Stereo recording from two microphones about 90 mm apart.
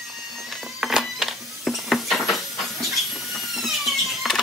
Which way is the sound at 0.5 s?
Centre (ahead or behind).